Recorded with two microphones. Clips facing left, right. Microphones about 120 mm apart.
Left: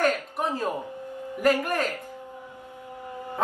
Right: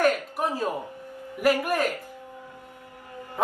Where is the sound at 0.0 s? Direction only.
10° right (ahead or behind).